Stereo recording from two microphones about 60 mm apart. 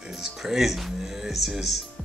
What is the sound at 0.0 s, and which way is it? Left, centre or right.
Music, centre.